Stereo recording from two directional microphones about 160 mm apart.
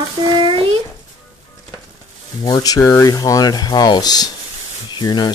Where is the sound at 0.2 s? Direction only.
30° right (ahead or behind).